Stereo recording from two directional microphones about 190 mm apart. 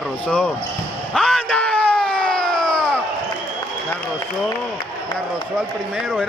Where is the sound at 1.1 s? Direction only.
Centre (ahead or behind).